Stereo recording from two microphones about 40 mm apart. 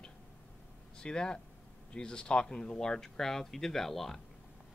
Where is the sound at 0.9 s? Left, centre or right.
Left.